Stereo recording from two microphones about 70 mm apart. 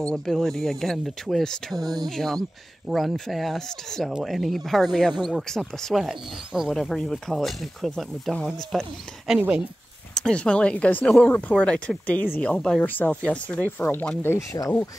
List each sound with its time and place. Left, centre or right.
0.0 s speech: centre
10.1 s speech: centre
12.8 s speech: left
14.5 s speech: left